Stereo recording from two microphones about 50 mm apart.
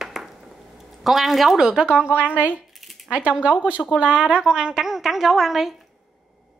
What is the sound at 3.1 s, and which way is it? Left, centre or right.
A woman's voice, right.